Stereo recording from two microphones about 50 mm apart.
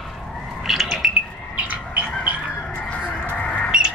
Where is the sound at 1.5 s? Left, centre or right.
Right.